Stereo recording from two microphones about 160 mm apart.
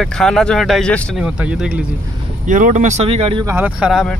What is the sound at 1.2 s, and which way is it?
Speech, 5° right (ahead or behind).